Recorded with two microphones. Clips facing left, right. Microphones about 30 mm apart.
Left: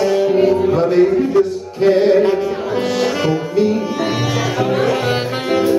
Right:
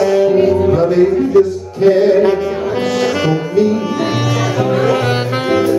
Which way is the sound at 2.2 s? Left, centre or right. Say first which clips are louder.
Right 2 dB; right.